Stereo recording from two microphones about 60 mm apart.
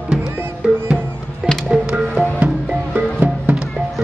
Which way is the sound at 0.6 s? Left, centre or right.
Centre.